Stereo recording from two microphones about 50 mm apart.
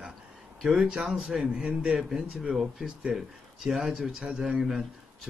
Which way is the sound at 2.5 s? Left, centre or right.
Centre.